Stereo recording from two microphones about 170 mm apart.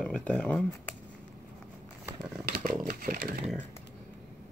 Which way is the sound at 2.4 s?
60° right (ahead or behind).